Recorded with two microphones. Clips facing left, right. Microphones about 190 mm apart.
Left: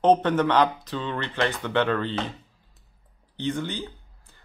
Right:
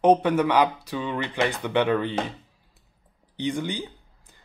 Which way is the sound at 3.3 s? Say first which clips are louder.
Right 1 dB; 15° right (ahead or behind).